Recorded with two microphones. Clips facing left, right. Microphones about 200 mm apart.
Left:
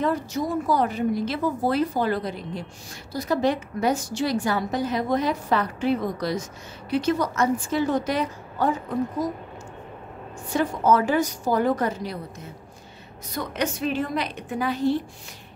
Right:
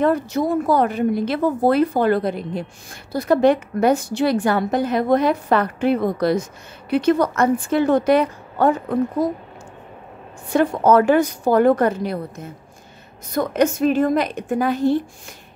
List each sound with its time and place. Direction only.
0.0 s a woman's voice: 60° right (ahead or behind)
10.5 s a woman's voice: 60° right (ahead or behind)
13.3 s a woman's voice: 50° right (ahead or behind)